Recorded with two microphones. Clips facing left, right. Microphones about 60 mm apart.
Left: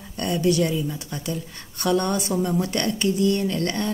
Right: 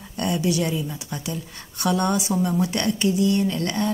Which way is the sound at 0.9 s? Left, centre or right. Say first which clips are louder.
Left 1 dB; centre.